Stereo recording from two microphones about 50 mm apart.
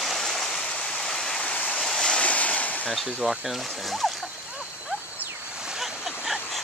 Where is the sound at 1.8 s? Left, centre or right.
Centre.